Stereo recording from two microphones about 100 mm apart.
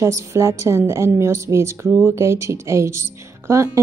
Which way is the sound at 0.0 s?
30° right (ahead or behind).